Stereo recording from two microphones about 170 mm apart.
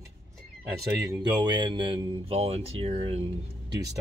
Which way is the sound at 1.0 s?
25° right (ahead or behind).